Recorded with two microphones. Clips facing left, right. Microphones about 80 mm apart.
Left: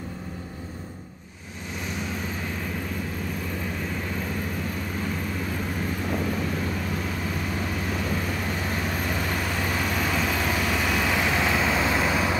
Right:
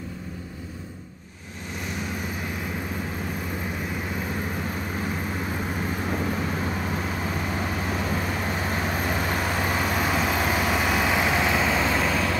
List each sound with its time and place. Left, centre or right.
5.0 s vehicle: right; by 12.4 s centre